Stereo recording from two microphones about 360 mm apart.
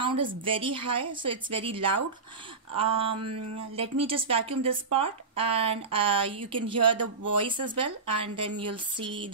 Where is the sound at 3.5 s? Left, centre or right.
Centre.